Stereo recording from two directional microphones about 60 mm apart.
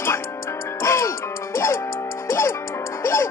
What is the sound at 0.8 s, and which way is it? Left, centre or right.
Music, left.